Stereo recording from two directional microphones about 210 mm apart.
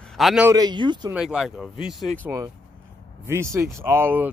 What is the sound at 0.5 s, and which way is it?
Speech, 20° right (ahead or behind).